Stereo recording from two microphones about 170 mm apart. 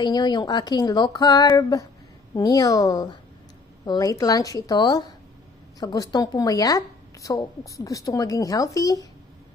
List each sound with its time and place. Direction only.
0.0 s a woman's voice: 25° left (ahead or behind)